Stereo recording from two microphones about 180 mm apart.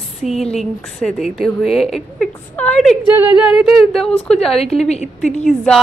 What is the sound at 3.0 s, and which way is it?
Speech, 10° right (ahead or behind).